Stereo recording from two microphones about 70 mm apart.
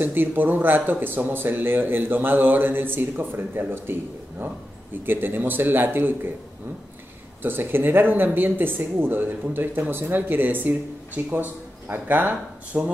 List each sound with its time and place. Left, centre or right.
0.0 s speech: right
7.4 s speech: right